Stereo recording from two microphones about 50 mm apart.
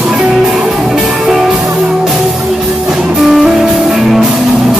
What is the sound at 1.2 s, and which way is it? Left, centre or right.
Music, centre.